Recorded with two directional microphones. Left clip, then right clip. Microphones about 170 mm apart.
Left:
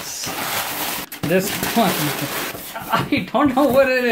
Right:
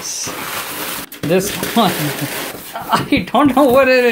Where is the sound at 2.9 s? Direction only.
50° right (ahead or behind).